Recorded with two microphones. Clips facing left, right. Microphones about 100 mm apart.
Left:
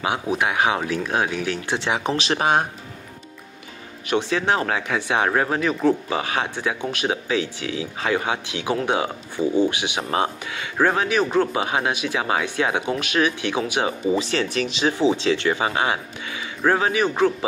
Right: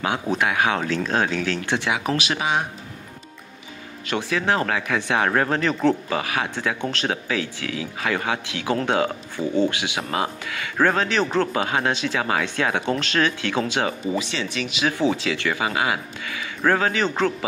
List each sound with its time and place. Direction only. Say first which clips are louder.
0.3 s speech: left 1 dB; 20° left (ahead or behind)
1.9 s speech: left 4 dB; 30° left (ahead or behind)
4.1 s speech: left 2 dB; 20° left (ahead or behind)
6.0 s speech: left 1 dB; 25° left (ahead or behind)
14.1 s speech: left 4 dB; 45° left (ahead or behind)
14.8 s speech: left 1 dB; 20° left (ahead or behind)